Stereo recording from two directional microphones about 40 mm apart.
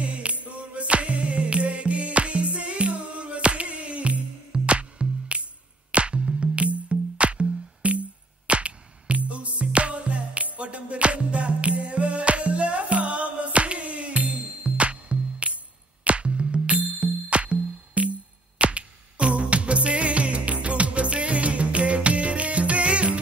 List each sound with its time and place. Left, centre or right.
0.0 s music: right